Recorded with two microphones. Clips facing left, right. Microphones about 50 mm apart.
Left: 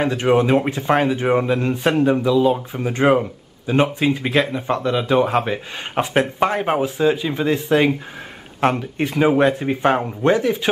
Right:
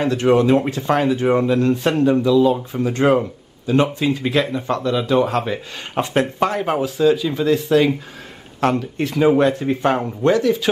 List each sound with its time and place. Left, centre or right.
0.0 s speech: centre